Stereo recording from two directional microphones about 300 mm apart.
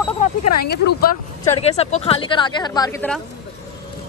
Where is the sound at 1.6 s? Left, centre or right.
Left.